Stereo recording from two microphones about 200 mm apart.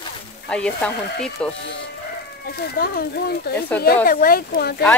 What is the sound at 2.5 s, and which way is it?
Speech, 50° left (ahead or behind).